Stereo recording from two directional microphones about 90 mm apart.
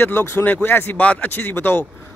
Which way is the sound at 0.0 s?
25° left (ahead or behind).